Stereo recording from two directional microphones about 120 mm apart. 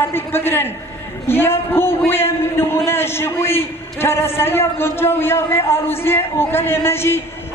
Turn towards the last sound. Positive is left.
turn(degrees=20)  # may be behind; listen again after turning